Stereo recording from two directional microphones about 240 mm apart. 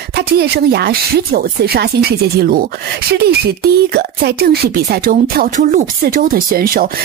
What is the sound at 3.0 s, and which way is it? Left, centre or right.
Speech, right.